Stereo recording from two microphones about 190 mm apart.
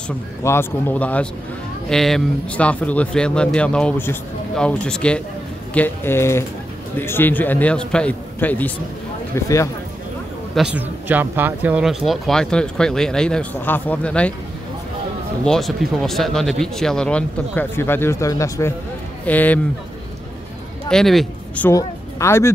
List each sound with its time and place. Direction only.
0.4 s a man's voice: 15° left (ahead or behind)
10.5 s speech: 5° right (ahead or behind)
15.4 s a man's voice: centre (ahead or behind)
20.9 s speech: centre (ahead or behind)
21.6 s speech: 15° left (ahead or behind)